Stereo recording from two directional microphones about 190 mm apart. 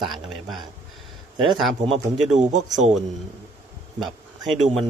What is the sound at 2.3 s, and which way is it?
Speech, 40° right (ahead or behind).